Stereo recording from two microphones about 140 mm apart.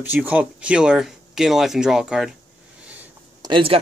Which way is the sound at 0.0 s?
10° right (ahead or behind).